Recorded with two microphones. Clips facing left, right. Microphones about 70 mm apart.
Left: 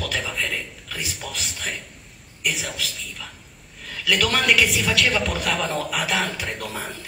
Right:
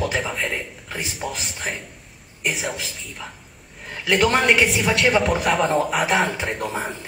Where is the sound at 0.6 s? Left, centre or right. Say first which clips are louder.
Right 2 dB; right.